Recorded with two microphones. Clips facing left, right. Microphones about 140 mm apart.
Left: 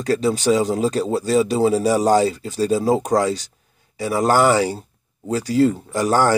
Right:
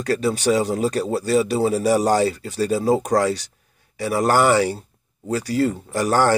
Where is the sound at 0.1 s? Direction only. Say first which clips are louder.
Left 2 dB; 25° left (ahead or behind).